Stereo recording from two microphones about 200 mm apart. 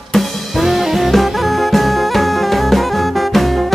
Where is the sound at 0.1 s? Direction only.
Centre (ahead or behind).